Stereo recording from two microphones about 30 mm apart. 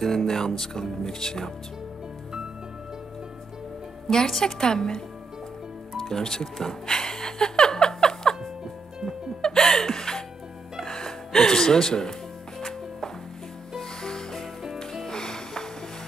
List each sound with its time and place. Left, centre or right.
0.0 s speech: centre
4.3 s speech: centre
6.9 s music: left
9.4 s music: centre
13.7 s music: centre